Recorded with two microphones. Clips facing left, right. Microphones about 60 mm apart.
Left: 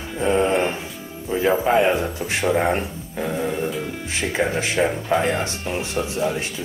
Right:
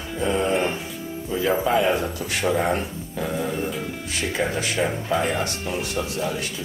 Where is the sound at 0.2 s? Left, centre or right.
Left.